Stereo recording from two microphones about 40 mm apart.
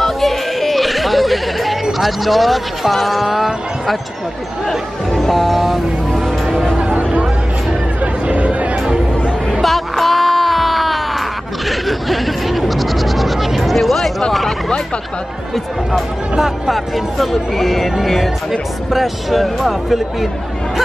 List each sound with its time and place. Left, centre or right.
0.0 s music: centre
4.6 s speech: centre
6.4 s music: centre
6.9 s a sound: right
8.0 s chatter: right
9.5 s a sound: centre
16.3 s speech: centre